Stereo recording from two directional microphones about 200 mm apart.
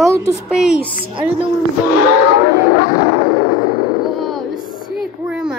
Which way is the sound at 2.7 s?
45° left (ahead or behind).